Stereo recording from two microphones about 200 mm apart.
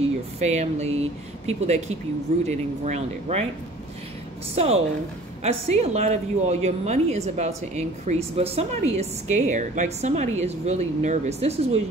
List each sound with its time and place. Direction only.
0.0 s speech: 35° right (ahead or behind)
4.6 s speech: 30° right (ahead or behind)